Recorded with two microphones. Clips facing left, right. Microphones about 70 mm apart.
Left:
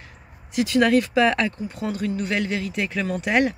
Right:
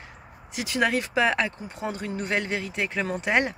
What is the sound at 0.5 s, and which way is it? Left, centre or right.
Speech, centre.